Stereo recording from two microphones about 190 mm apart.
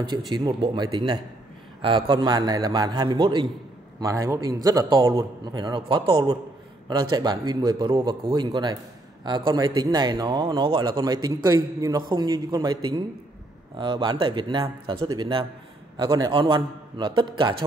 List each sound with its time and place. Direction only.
0.0 s a man's voice: 25° right (ahead or behind)